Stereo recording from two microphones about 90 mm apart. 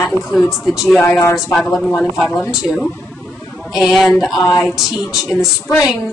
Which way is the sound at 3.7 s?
Centre (ahead or behind).